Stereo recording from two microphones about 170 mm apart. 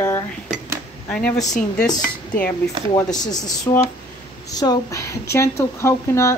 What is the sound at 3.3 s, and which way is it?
A woman's voice, 20° left (ahead or behind).